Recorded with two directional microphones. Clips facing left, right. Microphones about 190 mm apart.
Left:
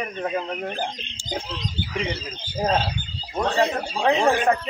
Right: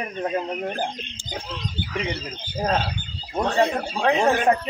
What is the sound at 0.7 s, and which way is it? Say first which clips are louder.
Speech: right 2 dB; 55° right (ahead or behind).